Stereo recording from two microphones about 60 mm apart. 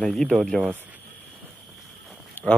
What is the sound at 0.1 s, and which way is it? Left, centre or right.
Speech, centre.